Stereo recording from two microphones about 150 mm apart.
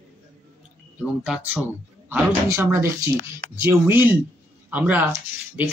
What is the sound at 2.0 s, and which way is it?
Speech, 15° right (ahead or behind).